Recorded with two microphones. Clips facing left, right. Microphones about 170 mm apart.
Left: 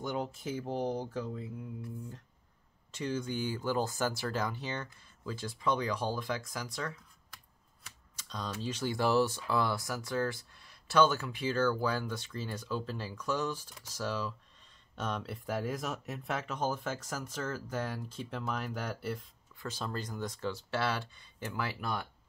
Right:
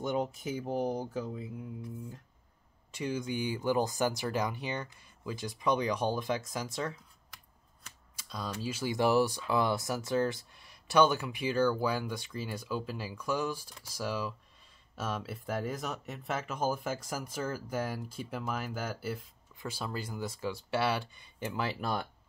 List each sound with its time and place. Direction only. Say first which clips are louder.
0.0 s speech: right 3 dB; 20° right (ahead or behind)
2.9 s speech: right 1 dB; 10° right (ahead or behind)
8.2 s typing: right 1 dB; 10° right (ahead or behind)
8.5 s speech: right 1 dB; 5° right (ahead or behind)
19.5 s a sound: right 1 dB; 20° right (ahead or behind)
19.8 s speech: even; 10° right (ahead or behind)
21.6 s speech: right 4 dB; 30° right (ahead or behind)